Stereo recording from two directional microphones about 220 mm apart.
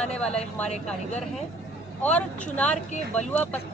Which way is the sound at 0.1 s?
5° left (ahead or behind).